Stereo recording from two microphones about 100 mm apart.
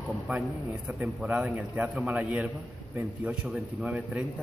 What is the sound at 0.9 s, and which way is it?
Speech, 5° right (ahead or behind).